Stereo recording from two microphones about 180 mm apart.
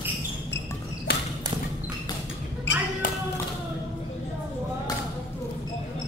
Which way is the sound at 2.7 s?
85° left.